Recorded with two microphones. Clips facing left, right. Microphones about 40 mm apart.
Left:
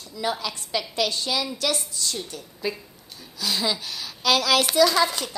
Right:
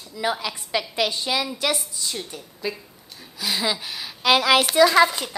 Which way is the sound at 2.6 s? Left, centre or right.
Centre.